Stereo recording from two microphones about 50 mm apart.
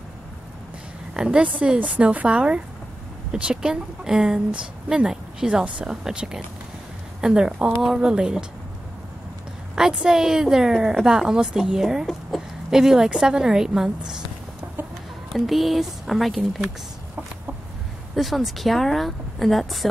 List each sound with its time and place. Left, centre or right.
1.1 s a woman's voice: centre
1.8 s a woman's voice: right; by 8.1 s centre
8.1 s a woman's voice: centre
9.8 s a woman's voice: centre
15.3 s speech: centre
18.1 s speech: centre